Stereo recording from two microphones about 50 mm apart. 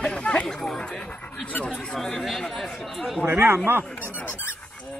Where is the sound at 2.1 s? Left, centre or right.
Centre.